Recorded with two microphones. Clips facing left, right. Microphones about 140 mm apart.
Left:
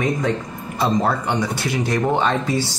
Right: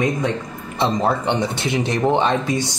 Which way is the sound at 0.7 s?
25° right (ahead or behind).